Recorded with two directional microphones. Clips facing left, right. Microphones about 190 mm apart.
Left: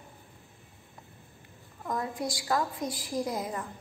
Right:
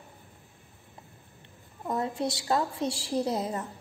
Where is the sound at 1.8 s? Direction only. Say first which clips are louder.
Right 3 dB; 25° right (ahead or behind).